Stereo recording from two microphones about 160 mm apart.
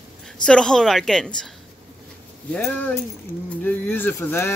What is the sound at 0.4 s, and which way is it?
Speech, 5° left (ahead or behind).